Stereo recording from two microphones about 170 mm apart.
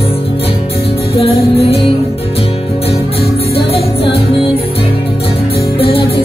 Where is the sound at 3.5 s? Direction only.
35° left (ahead or behind).